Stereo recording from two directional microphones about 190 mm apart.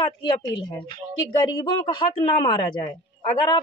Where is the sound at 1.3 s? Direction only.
25° left (ahead or behind).